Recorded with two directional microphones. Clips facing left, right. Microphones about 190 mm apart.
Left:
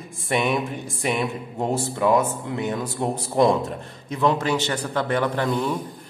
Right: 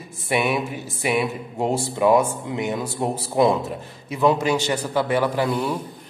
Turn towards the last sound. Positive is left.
turn(degrees=-10)  # may be behind; listen again after turning